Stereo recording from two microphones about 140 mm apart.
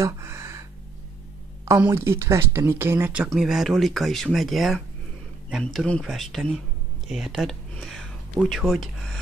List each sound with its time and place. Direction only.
0.0 s a sound: 20° right (ahead or behind)
1.7 s speech: 20° right (ahead or behind)
3.3 s speech: centre (ahead or behind)